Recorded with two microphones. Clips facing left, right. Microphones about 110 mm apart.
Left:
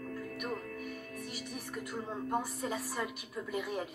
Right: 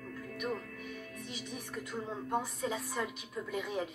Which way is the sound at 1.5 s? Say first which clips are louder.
Even; centre (ahead or behind).